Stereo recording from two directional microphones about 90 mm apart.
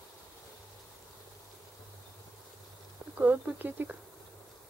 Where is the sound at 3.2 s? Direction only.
15° right (ahead or behind).